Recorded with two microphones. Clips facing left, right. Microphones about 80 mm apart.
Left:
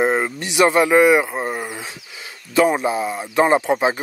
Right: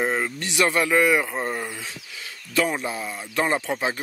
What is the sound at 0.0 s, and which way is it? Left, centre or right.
Speech, left.